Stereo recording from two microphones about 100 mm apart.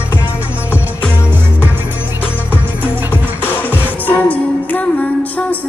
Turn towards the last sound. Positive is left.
turn(degrees=15)  # may be behind; listen again after turning